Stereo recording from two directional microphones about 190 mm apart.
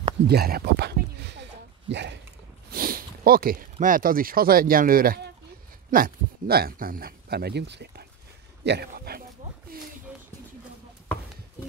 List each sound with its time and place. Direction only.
0.3 s a sound: 55° right (ahead or behind)
1.9 s speech: 65° right (ahead or behind)
2.7 s sniff: 50° right (ahead or behind)
3.8 s speech: 45° right (ahead or behind)